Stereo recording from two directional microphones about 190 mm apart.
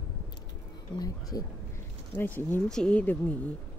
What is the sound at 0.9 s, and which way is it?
A woman's voice, 20° left (ahead or behind).